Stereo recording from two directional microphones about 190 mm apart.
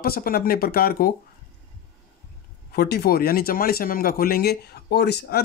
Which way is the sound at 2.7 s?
55° left (ahead or behind).